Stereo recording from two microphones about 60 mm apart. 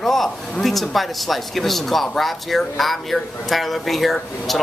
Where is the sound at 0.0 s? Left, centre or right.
Centre.